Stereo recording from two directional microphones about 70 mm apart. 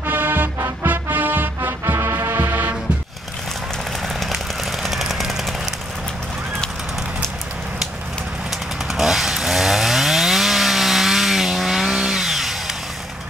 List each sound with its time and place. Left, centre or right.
0.0 s music: right
4.2 s a sound: centre
8.5 s chainsaw: centre